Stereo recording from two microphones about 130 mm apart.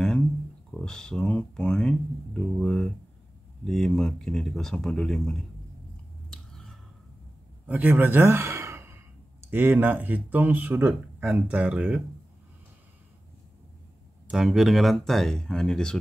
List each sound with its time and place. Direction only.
0.7 s speech: 5° left (ahead or behind)
6.3 s finger snapping: centre (ahead or behind)
7.6 s a man's voice: 10° right (ahead or behind)
14.2 s speech: 5° right (ahead or behind)